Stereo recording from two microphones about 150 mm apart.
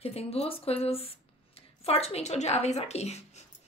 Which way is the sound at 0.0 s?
45° left (ahead or behind).